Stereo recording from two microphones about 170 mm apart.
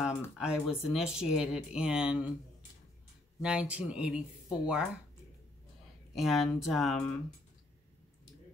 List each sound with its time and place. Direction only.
0.4 s speech: 5° right (ahead or behind)
3.4 s speech: 5° right (ahead or behind)
6.1 s speech: centre (ahead or behind)